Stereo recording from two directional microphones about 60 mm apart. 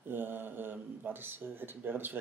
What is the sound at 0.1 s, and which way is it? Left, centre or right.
Speech, right.